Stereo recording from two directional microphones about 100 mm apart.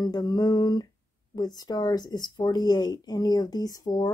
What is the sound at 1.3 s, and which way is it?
Speech, 40° left (ahead or behind).